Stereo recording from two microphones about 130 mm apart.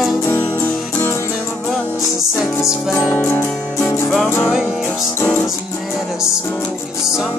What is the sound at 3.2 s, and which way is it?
Music, 15° left (ahead or behind).